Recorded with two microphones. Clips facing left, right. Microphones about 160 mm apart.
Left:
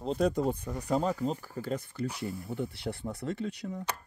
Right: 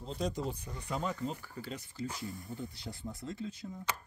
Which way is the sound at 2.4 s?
65° left (ahead or behind).